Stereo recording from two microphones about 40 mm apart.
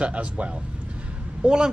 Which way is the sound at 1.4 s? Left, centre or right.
Centre.